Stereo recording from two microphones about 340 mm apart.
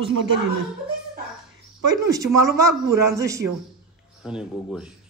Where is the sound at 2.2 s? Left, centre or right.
Right.